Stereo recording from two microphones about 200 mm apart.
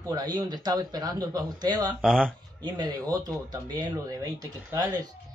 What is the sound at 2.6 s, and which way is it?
Speech, 20° right (ahead or behind).